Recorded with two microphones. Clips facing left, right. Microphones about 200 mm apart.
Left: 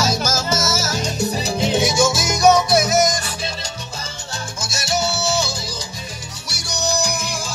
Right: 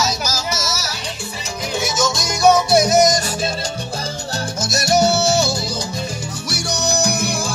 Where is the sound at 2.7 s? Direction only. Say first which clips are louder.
Right 3 dB; 35° right (ahead or behind).